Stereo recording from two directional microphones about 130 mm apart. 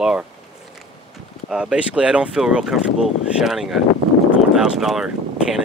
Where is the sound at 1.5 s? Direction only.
5° right (ahead or behind).